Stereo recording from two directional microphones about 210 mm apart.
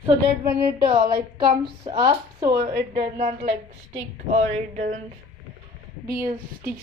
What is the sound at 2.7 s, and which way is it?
Speech, 50° right (ahead or behind).